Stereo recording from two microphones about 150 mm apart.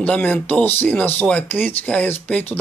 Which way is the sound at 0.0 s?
10° left (ahead or behind).